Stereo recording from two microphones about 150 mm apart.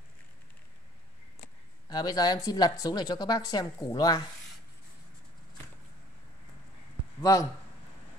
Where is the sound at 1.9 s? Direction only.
25° left (ahead or behind).